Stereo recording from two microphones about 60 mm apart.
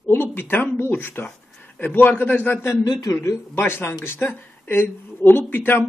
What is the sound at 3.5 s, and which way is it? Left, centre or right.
A man's voice, left.